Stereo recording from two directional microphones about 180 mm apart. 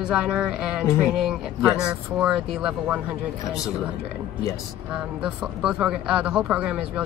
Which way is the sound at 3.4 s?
15° left (ahead or behind).